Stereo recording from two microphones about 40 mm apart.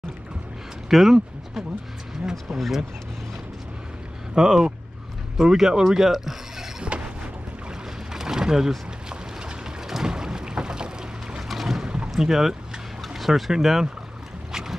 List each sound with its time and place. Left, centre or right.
0.8 s a sound: centre
2.5 s speech: centre
4.4 s speech: centre
6.9 s a sound: right
8.1 s boat: centre
11.4 s boat: centre
11.8 s boat: right
12.1 s speech: centre
14.5 s boat: centre